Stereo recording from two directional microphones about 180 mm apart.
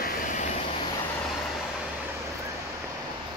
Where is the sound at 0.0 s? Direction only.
45° left (ahead or behind).